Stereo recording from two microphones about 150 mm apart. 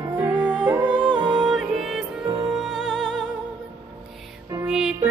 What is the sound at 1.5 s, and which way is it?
Music, centre (ahead or behind).